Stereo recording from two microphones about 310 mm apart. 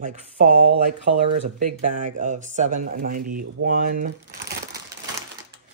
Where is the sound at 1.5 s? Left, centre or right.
Right.